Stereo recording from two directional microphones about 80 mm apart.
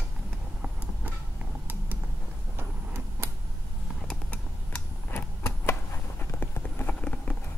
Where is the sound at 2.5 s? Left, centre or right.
Right.